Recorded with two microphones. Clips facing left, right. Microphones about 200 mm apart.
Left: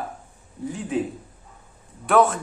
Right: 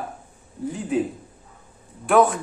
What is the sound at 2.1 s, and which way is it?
Speech, 5° right (ahead or behind).